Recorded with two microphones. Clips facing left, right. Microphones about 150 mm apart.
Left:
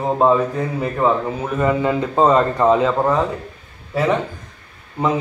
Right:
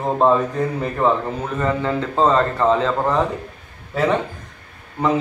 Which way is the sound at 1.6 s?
10° left (ahead or behind).